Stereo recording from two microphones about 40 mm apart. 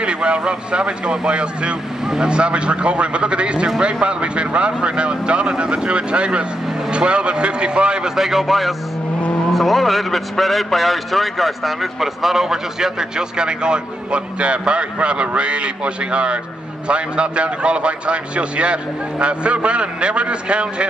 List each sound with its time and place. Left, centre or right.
0.0 s a man's voice: right
8.2 s a man's voice: centre
13.4 s a man's voice: right